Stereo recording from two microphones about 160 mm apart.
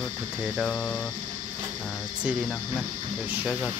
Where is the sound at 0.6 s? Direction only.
Centre (ahead or behind).